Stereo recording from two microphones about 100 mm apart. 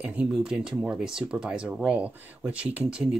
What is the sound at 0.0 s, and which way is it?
Speech, 10° right (ahead or behind).